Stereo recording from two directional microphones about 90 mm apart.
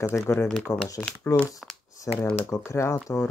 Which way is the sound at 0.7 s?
40° left (ahead or behind).